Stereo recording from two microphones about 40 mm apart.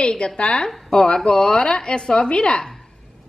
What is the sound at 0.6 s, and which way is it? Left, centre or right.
A woman's voice, centre.